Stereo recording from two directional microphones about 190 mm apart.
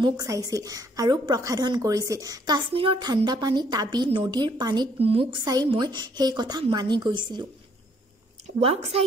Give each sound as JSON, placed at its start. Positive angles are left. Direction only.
{"t": 0.0, "sound": "a woman's voice", "side_deg": -20}
{"t": 5.4, "sound": "a woman's voice", "side_deg": -20}
{"t": 8.5, "sound": "a woman's voice", "side_deg": -30}